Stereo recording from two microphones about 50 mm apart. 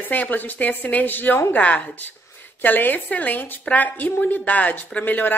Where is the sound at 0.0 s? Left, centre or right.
Left.